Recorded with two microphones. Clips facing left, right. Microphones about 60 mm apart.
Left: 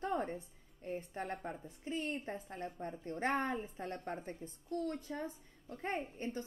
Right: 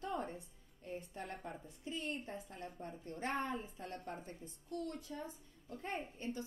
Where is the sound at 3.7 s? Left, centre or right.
Left.